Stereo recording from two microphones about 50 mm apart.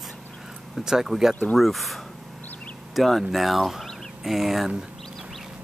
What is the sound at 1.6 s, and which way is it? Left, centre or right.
Speech, centre.